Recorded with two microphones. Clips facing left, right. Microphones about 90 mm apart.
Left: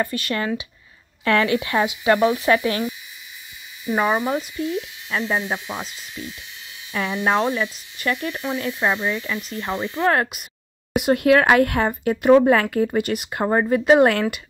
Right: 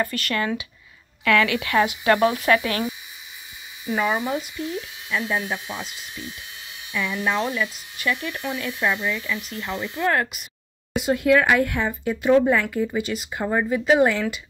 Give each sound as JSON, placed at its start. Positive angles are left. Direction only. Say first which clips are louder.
{"t": 0.0, "sound": "speech", "louder": "left 1 dB", "side_deg": 25}
{"t": 3.9, "sound": "speech", "louder": "left 3 dB", "side_deg": 35}
{"t": 6.9, "sound": "speech", "louder": "left 3 dB", "side_deg": 45}
{"t": 11.0, "sound": "speech", "louder": "left 3 dB", "side_deg": 60}
{"t": 12.0, "sound": "speech", "louder": "left 4 dB", "side_deg": 55}
{"t": 13.6, "sound": "speech", "louder": "left 3 dB", "side_deg": 45}